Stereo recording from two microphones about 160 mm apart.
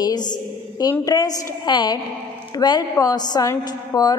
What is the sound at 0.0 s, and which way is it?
A woman's voice, 25° left (ahead or behind).